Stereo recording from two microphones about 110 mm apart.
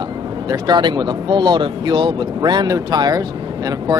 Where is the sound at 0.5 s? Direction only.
40° right (ahead or behind).